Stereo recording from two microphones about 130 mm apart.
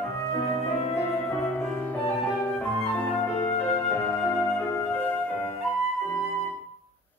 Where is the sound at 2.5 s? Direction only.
15° left (ahead or behind).